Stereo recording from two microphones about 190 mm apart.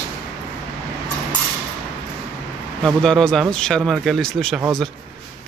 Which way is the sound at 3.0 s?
5° left (ahead or behind).